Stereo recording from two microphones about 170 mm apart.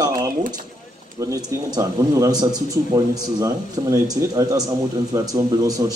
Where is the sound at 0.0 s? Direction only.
25° right (ahead or behind).